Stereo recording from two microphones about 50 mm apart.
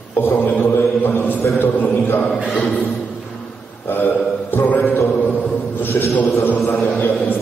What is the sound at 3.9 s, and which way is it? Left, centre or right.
Mantra, left.